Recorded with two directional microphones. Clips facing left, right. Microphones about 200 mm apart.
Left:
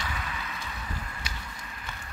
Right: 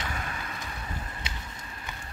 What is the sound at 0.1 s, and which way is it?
Vehicle, 45° right (ahead or behind).